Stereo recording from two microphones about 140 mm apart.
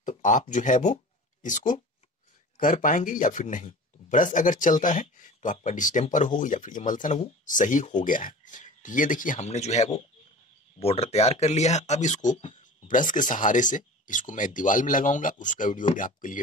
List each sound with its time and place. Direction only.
0.0 s speech: 65° left (ahead or behind)